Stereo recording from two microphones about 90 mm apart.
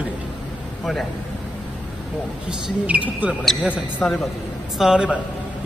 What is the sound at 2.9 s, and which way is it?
Speech, 15° right (ahead or behind).